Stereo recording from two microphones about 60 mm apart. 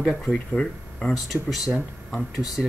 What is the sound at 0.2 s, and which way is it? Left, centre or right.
Speech, centre.